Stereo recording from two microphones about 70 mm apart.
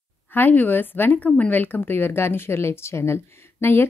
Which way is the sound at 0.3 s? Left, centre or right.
Left.